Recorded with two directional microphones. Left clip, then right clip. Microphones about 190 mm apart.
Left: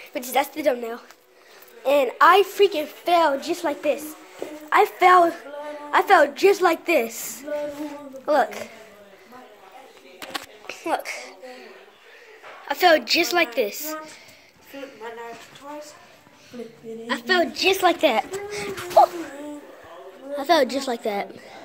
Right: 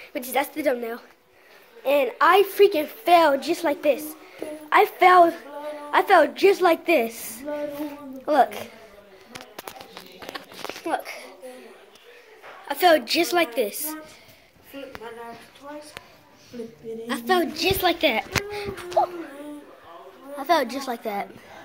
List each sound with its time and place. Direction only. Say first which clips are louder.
0.0 s a woman's voice: left 2 dB; centre (ahead or behind)
1.8 s a woman's voice: left 3 dB; centre (ahead or behind)
2.4 s a woman's voice: right 2 dB; 20° right (ahead or behind)
10.8 s a sound: left 3 dB; 10° left (ahead or behind)
12.6 s a woman's voice: left 1 dB; centre (ahead or behind)
17.1 s a woman's voice: left 2 dB; centre (ahead or behind)
19.0 s speech: left 7 dB; 40° left (ahead or behind)
20.3 s a woman's voice: left 3 dB; 10° right (ahead or behind)